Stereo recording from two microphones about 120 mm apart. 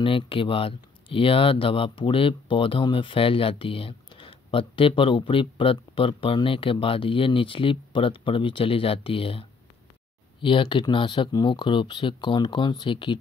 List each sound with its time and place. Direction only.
0.0 s speech: 50° left (ahead or behind)